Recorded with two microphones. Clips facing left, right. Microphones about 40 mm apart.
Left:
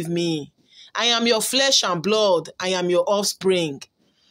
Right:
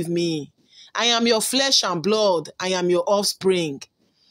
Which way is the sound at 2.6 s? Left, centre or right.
Left.